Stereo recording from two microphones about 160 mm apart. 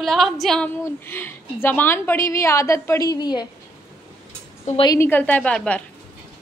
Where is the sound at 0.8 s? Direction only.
15° left (ahead or behind).